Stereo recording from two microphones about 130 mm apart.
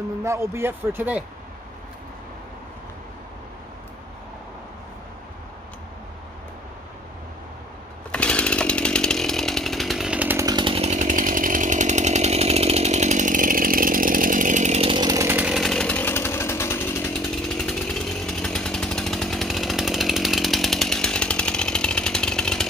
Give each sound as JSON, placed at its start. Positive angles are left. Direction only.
{"t": 0.2, "sound": "speech", "side_deg": -20}
{"t": 8.1, "sound": "chainsaw", "side_deg": 10}
{"t": 10.4, "sound": "chainsaw", "side_deg": -35}
{"t": 10.9, "sound": "chainsaw", "side_deg": -75}
{"t": 14.8, "sound": "chainsaw", "side_deg": -45}
{"t": 15.0, "sound": "chainsaw", "side_deg": -25}
{"t": 15.3, "sound": "chainsaw", "side_deg": -5}
{"t": 17.1, "sound": "chainsaw", "side_deg": 5}